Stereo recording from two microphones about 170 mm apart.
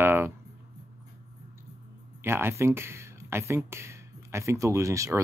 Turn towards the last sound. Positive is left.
turn(degrees=-20)  # may be behind; listen again after turning